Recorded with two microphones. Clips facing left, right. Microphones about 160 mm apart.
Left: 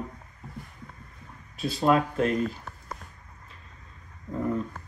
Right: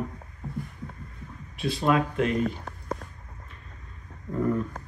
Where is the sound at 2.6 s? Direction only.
35° right (ahead or behind).